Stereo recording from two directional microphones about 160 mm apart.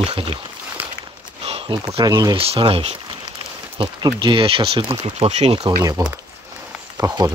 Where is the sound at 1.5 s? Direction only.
35° right (ahead or behind).